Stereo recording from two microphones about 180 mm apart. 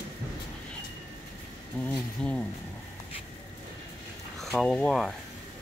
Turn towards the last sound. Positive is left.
turn(degrees=0)  # may be behind; listen again after turning